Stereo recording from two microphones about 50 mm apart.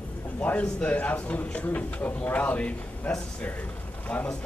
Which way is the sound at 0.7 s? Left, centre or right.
Left.